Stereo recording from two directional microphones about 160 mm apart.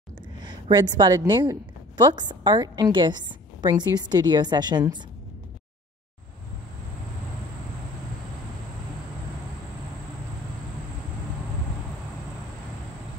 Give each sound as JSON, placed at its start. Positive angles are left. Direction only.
{"t": 0.4, "sound": "a woman's voice", "side_deg": -25}